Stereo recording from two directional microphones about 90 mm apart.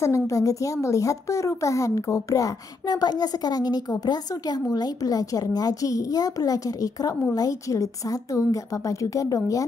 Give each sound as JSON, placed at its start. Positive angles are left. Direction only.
{"t": 0.0, "sound": "a woman's voice", "side_deg": 35}